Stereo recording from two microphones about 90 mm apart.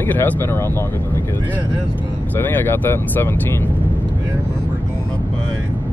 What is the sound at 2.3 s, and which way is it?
Speech, 20° left (ahead or behind).